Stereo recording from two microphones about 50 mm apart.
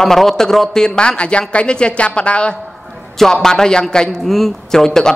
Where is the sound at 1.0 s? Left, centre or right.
Left.